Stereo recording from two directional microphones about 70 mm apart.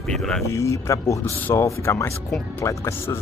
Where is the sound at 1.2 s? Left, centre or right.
Left.